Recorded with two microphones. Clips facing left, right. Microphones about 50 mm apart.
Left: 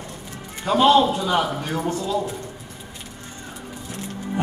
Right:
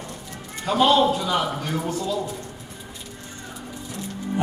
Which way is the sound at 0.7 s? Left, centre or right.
Left.